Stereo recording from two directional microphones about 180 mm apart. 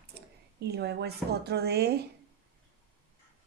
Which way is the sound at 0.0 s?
65° right (ahead or behind).